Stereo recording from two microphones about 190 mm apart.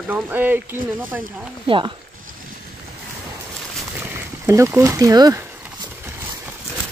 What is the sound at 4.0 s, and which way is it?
Speech, 15° right (ahead or behind).